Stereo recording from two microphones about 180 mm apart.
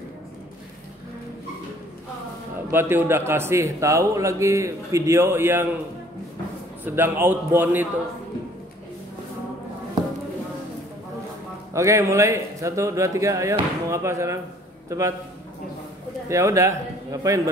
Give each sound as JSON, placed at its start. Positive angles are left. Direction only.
{"t": 2.7, "sound": "a man's voice", "side_deg": -10}
{"t": 6.8, "sound": "a man's voice", "side_deg": -10}
{"t": 11.7, "sound": "a man's voice", "side_deg": -15}
{"t": 16.3, "sound": "a man's voice", "side_deg": -15}